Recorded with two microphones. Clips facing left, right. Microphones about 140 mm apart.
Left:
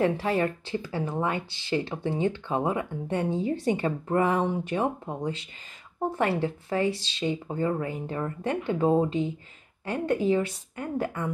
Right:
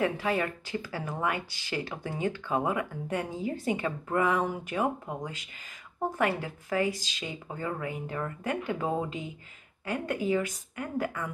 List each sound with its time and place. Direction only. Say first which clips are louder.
0.0 s speech: left 4 dB; 35° left (ahead or behind)